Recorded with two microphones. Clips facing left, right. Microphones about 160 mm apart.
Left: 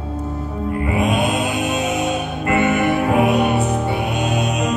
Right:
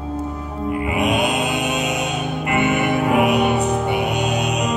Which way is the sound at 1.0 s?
20° right (ahead or behind).